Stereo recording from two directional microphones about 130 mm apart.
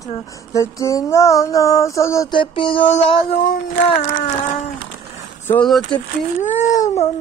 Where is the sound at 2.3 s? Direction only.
40° left (ahead or behind).